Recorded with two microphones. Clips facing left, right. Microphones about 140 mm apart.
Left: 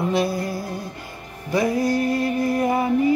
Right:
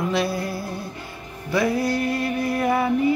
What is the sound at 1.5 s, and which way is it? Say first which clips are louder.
Speech: left 1 dB; 20° left (ahead or behind).